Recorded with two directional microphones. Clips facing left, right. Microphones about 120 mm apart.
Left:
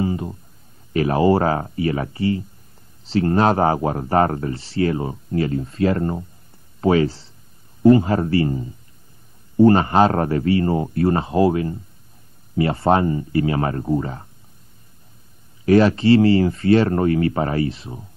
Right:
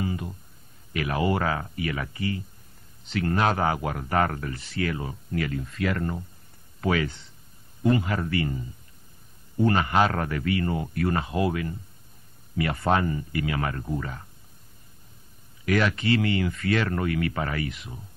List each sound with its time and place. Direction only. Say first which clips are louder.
0.0 s a sound: left 7 dB; 30° left (ahead or behind)
0.9 s speech: left 9 dB; 30° left (ahead or behind)
15.6 s speech: left 10 dB; 30° left (ahead or behind)